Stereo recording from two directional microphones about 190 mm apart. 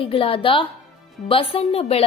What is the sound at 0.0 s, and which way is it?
A woman's voice, 30° left (ahead or behind).